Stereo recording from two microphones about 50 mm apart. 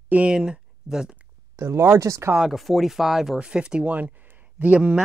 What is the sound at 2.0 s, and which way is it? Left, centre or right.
Speech, right.